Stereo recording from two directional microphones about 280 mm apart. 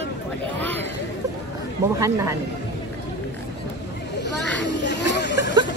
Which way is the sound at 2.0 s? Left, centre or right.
Centre.